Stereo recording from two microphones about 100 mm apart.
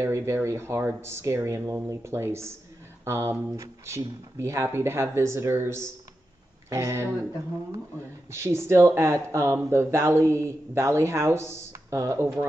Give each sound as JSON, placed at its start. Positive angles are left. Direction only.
{"t": 0.0, "sound": "speech", "side_deg": -30}
{"t": 8.3, "sound": "speech", "side_deg": -25}